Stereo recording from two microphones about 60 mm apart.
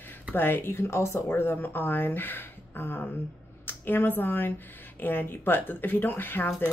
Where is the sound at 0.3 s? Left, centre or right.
Left.